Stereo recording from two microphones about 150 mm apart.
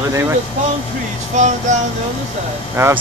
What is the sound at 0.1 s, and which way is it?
Speech, 15° right (ahead or behind).